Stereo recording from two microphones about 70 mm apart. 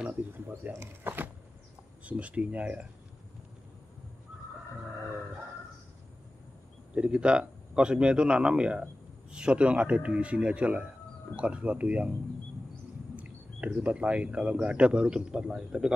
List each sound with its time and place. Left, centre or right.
0.1 s speech: right
2.0 s speech: centre
6.9 s speech: centre
13.1 s speech: right